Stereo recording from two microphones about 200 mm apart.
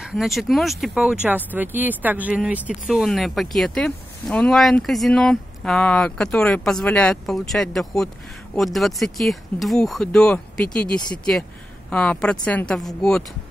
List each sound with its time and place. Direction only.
0.0 s speech: centre (ahead or behind)